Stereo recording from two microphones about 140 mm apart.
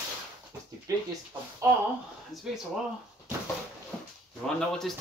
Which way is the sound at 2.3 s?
Centre (ahead or behind).